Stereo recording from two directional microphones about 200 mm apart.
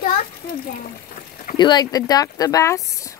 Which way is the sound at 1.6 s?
20° left (ahead or behind).